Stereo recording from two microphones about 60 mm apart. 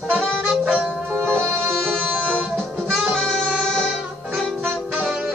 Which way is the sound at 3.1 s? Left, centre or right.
Centre.